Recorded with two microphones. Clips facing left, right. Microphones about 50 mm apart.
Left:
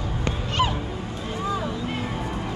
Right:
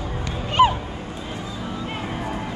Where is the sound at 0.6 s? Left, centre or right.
Centre.